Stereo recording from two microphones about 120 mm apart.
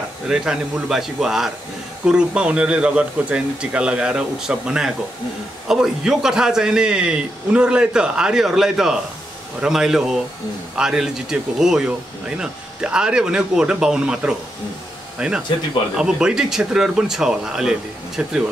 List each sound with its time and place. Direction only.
0.3 s a man's voice: 5° right (ahead or behind)